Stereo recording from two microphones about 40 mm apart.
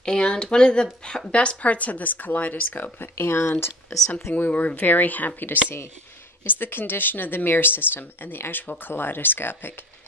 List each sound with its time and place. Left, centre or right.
0.0 s speech: left
2.7 s speech: left
4.5 s speech: left
6.4 s speech: left